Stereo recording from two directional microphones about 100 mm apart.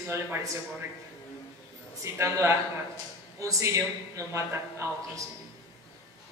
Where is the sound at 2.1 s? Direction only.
30° right (ahead or behind).